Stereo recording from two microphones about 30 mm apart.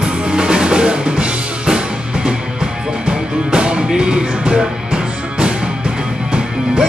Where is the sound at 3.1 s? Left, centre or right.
Right.